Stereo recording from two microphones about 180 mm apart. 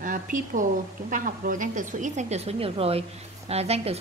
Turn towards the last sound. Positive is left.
turn(degrees=-35)  # may be behind; listen again after turning